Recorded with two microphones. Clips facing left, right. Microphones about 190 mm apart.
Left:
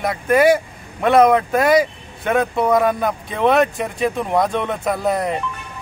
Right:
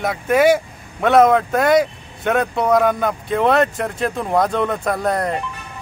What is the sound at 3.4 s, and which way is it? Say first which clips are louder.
Speech: left 1 dB; 15° left (ahead or behind).